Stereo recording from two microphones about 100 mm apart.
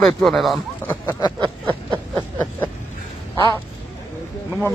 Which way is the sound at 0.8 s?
20° left (ahead or behind).